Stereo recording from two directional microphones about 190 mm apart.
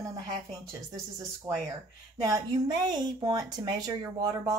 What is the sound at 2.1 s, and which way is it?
Speech, 20° right (ahead or behind).